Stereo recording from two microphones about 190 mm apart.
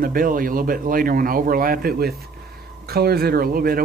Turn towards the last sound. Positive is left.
turn(degrees=-50)  # may be behind; listen again after turning